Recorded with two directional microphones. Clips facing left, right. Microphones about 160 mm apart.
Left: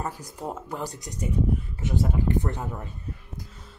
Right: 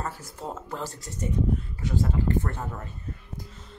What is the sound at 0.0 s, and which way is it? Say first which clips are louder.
Speech: left 2 dB; 15° left (ahead or behind).